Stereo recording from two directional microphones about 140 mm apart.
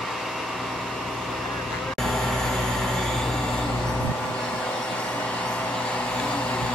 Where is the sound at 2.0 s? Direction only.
5° left (ahead or behind).